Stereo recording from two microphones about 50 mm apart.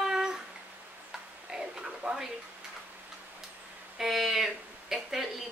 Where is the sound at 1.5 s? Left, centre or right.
Centre.